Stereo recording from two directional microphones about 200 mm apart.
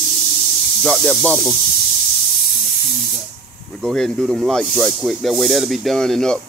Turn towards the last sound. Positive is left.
turn(degrees=0)  # may be behind; listen again after turning